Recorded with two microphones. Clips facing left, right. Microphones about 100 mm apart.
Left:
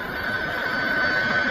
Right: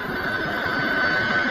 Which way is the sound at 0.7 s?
55° right (ahead or behind).